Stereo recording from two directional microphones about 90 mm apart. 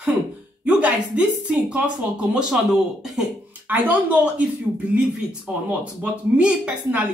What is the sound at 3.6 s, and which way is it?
Speech, 20° right (ahead or behind).